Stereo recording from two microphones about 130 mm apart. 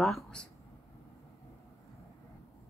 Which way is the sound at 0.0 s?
5° left (ahead or behind).